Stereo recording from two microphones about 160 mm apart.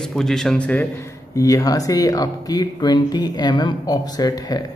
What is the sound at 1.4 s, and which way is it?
Speech, 20° left (ahead or behind).